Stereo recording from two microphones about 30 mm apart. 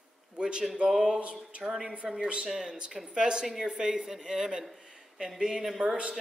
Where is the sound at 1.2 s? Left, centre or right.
Right.